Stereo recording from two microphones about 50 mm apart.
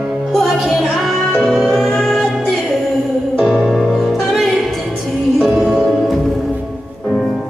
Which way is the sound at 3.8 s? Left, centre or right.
Centre.